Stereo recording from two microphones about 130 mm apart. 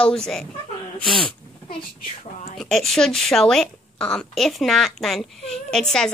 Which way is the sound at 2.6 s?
Centre (ahead or behind).